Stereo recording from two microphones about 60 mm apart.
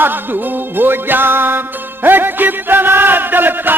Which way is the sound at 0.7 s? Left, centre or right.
Right.